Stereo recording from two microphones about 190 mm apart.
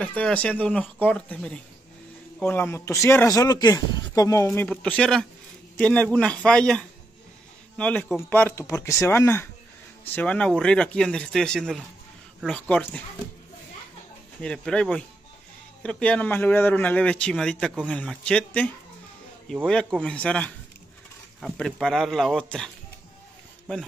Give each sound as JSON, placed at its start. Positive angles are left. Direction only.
{"t": 0.0, "sound": "a man's voice", "side_deg": 5}
{"t": 4.6, "sound": "a man's voice", "side_deg": 5}
{"t": 14.4, "sound": "a man's voice", "side_deg": 5}